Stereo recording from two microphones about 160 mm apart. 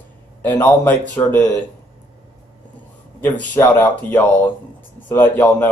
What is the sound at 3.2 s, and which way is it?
Speech, 10° left (ahead or behind).